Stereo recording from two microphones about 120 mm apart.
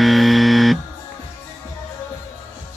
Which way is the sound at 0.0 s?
Centre (ahead or behind).